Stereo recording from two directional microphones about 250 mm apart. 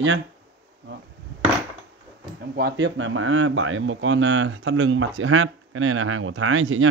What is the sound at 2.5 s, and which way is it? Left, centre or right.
Speech, right.